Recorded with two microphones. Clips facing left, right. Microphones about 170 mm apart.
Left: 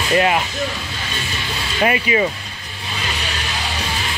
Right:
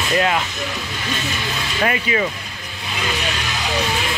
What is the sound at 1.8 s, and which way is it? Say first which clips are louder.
Speech: left 3 dB; 15° left (ahead or behind).